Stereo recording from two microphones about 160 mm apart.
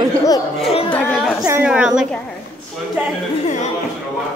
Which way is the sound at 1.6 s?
5° right (ahead or behind).